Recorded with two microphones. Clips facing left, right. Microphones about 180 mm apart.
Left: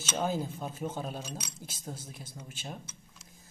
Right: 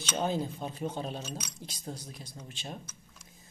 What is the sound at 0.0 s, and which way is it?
Speech, 5° left (ahead or behind).